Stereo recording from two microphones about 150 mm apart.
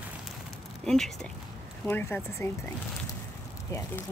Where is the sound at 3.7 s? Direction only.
20° left (ahead or behind).